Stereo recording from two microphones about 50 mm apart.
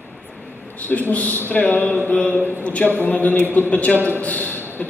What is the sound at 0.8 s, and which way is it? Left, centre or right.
A man's voice, left.